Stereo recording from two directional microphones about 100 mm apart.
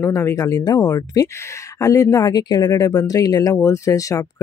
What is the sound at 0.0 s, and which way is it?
Speech, 30° left (ahead or behind).